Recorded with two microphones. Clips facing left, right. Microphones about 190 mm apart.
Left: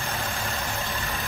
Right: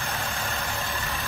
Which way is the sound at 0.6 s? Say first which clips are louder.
Left 1 dB; 15° left (ahead or behind).